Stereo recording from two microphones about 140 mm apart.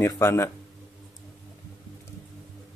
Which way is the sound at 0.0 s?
20° left (ahead or behind).